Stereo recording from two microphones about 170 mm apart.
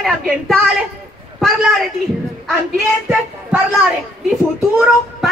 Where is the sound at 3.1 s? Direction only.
5° right (ahead or behind).